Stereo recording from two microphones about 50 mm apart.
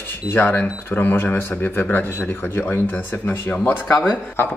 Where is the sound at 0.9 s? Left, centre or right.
Left.